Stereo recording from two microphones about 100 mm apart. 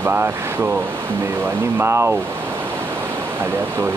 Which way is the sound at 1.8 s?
25° right (ahead or behind).